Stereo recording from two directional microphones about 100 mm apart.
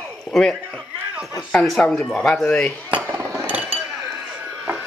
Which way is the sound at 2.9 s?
20° right (ahead or behind).